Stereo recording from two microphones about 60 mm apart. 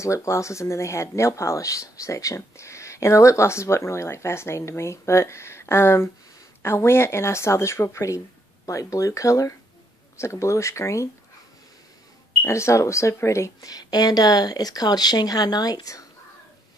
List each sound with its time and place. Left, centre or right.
0.0 s speech: left
10.1 s speech: left
12.4 s speech: left
13.6 s speech: left